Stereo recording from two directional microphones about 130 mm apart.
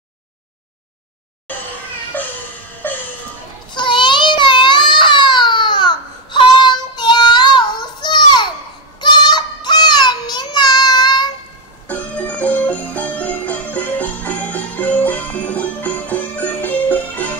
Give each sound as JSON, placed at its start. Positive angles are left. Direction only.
{"t": 2.8, "sound": "music", "side_deg": 15}
{"t": 3.7, "sound": "baby cry", "side_deg": 35}
{"t": 9.0, "sound": "child singing", "side_deg": 35}
{"t": 11.9, "sound": "music", "side_deg": 10}